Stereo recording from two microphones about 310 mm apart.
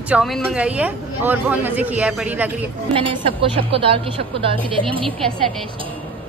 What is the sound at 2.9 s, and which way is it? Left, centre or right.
A woman's voice, centre.